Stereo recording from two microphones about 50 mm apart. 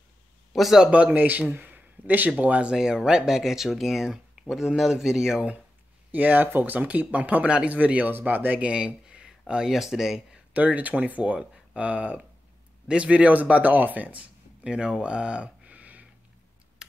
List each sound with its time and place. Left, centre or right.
0.5 s speech: centre
0.8 s speech: centre
1.1 s speech: right
1.5 s a sound: right
2.4 s speech: right
2.7 s speech: centre
6.1 s speech: right
8.1 s speech: right
8.5 s speech: right
9.7 s speech: centre
10.5 s speech: right